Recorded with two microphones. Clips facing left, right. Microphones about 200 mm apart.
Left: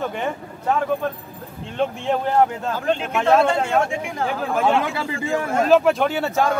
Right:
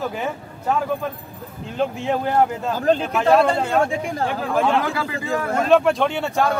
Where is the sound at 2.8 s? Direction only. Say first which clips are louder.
Right 5 dB; 35° right (ahead or behind).